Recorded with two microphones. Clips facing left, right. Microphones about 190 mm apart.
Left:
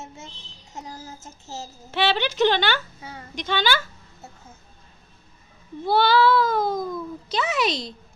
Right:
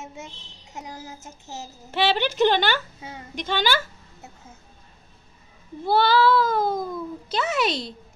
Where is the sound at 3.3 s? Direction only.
5° right (ahead or behind).